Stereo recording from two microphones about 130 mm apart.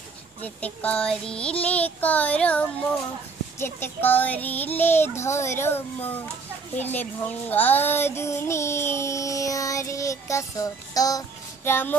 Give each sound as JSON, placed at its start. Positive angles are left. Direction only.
{"t": 0.4, "sound": "child singing", "side_deg": 10}